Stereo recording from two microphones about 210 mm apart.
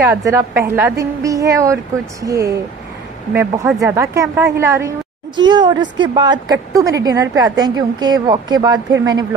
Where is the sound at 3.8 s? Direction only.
15° right (ahead or behind).